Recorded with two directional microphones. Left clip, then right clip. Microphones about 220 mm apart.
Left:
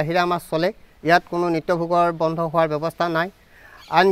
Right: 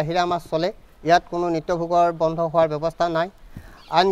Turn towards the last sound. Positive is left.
turn(degrees=35)  # may be behind; listen again after turning